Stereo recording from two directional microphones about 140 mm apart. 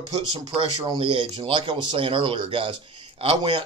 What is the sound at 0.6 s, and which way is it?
Speech, 35° right (ahead or behind).